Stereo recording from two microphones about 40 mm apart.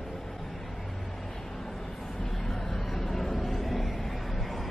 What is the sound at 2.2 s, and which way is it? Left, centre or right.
Vehicle, centre.